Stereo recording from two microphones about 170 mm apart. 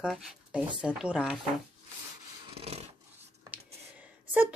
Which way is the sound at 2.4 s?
35° right (ahead or behind).